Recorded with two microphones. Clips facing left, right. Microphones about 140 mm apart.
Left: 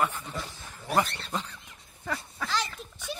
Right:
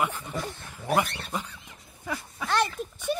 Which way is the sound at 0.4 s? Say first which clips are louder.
Right 5 dB; 55° right (ahead or behind).